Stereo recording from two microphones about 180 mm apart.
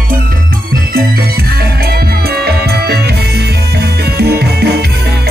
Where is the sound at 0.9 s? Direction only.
55° right (ahead or behind).